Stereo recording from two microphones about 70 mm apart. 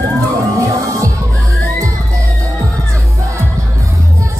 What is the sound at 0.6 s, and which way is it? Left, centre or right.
Music, right.